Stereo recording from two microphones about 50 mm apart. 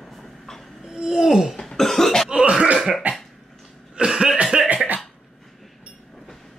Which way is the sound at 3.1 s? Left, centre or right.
Right.